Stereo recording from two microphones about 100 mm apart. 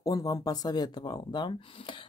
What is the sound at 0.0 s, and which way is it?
Speech, 35° left (ahead or behind).